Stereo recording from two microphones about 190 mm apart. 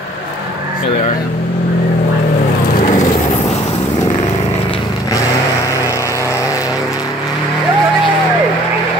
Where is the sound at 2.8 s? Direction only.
40° left (ahead or behind).